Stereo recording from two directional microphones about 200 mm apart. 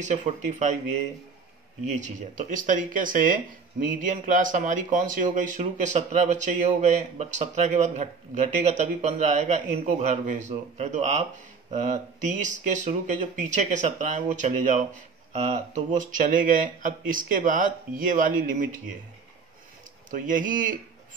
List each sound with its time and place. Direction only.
0.0 s speech: 35° right (ahead or behind)
2.0 s speech: 35° right (ahead or behind)
20.1 s speech: 40° right (ahead or behind)